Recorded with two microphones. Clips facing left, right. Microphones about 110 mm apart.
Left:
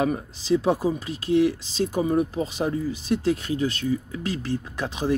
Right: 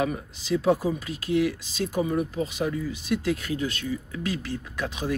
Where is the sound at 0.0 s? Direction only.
30° left (ahead or behind).